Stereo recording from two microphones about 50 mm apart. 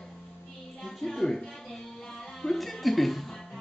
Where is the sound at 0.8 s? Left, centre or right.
Centre.